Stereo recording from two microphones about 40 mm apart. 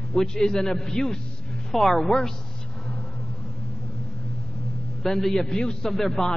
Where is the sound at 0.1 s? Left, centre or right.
Centre.